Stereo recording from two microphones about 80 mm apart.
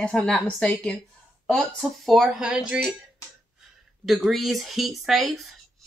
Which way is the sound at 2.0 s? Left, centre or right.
Centre.